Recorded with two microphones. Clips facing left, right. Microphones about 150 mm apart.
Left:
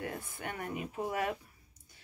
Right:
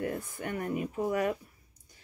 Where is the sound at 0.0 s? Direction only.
45° right (ahead or behind).